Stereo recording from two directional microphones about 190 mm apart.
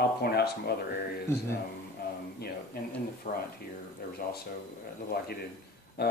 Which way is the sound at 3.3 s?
40° left (ahead or behind).